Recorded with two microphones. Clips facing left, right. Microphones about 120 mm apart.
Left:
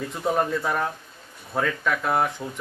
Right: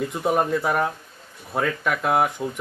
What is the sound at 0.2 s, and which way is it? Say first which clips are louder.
Speech: right 1 dB; 15° right (ahead or behind).